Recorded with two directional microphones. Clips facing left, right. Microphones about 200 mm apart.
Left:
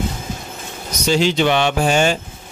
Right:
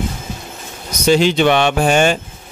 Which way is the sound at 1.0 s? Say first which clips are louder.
Right 4 dB; 55° right (ahead or behind).